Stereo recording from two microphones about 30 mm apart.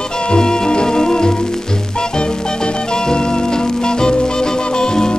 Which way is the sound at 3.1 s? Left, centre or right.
Left.